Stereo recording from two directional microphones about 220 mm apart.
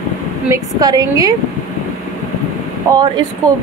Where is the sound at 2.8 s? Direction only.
15° right (ahead or behind).